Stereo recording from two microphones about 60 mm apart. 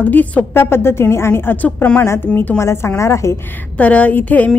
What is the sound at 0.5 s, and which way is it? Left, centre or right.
A woman's voice, left.